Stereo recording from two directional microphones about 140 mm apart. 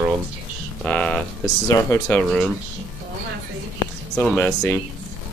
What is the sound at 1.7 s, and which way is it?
Speech, 20° left (ahead or behind).